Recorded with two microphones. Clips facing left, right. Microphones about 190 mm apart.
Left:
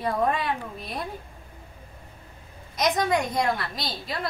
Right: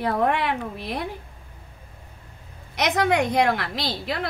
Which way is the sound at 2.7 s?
70° right (ahead or behind).